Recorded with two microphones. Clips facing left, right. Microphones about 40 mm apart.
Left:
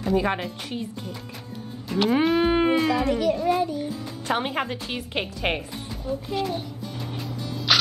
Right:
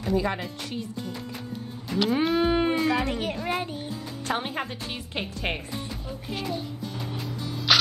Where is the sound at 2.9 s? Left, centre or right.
Right.